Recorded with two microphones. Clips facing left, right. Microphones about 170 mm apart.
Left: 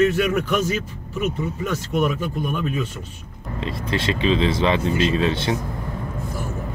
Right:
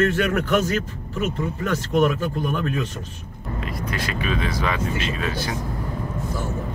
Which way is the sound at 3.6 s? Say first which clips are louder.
Left 4 dB; 25° left (ahead or behind).